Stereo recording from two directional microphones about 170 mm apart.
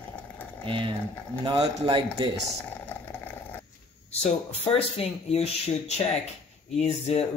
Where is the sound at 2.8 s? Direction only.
10° left (ahead or behind).